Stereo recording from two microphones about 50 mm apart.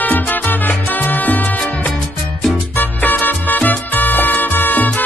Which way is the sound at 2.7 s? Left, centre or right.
Left.